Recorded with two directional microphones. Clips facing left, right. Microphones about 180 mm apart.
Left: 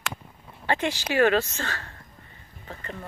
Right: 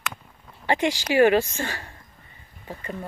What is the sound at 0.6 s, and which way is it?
Speech, 15° right (ahead or behind).